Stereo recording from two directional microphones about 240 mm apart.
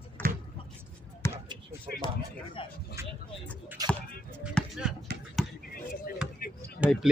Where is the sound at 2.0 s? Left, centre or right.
Centre.